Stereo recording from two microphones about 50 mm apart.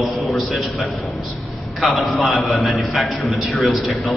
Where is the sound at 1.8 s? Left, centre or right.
Centre.